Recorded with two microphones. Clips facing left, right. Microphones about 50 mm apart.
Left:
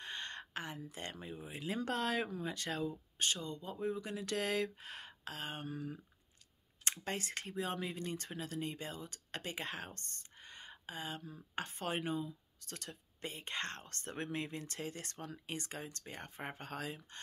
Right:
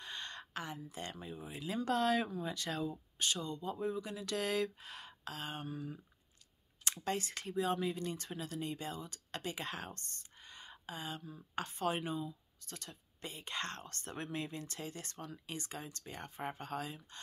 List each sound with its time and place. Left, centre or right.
0.0 s a sound: left
1.5 s speech: left
6.8 s speech: left
9.9 s a sound: left
11.2 s speech: left
12.6 s speech: left
13.2 s speech: left
16.1 s speech: left